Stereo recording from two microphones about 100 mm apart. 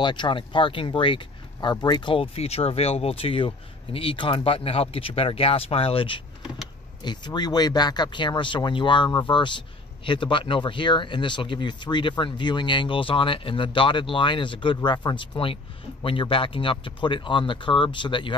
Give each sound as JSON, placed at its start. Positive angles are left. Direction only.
{"t": 0.0, "sound": "speech", "side_deg": 50}
{"t": 2.3, "sound": "speech", "side_deg": 90}
{"t": 7.0, "sound": "speech", "side_deg": 45}
{"t": 16.0, "sound": "speech", "side_deg": 65}